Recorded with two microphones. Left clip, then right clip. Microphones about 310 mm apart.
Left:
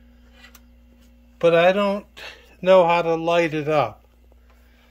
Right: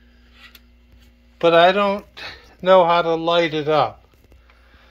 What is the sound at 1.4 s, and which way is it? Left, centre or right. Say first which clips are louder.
Speech: right 3 dB; centre.